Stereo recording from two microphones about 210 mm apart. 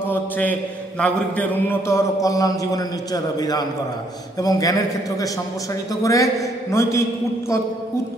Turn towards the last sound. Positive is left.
turn(degrees=15)  # may be behind; listen again after turning